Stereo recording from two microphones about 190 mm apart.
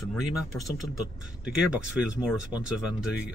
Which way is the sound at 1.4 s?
5° right (ahead or behind).